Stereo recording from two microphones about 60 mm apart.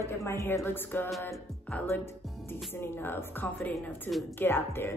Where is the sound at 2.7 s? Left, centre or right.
Left.